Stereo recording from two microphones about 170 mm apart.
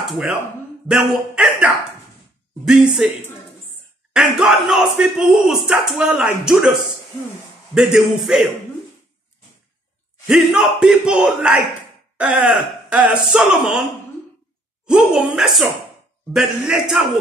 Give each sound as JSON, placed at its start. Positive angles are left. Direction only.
{"t": 0.1, "sound": "speech", "side_deg": 0}
{"t": 3.0, "sound": "speech", "side_deg": 0}
{"t": 10.2, "sound": "speech", "side_deg": -5}
{"t": 14.9, "sound": "speech", "side_deg": -5}